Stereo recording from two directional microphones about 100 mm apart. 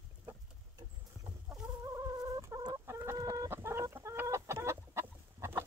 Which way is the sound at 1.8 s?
30° right (ahead or behind).